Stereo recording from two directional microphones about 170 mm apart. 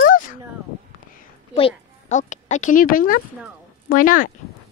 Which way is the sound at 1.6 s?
40° left (ahead or behind).